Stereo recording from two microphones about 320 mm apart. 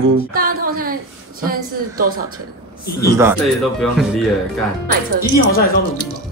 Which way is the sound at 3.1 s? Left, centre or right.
Centre.